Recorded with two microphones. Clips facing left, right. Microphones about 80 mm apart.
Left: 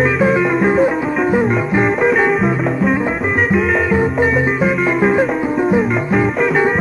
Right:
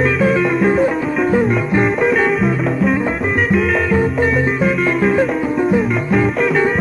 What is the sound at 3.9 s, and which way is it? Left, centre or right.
Music, centre.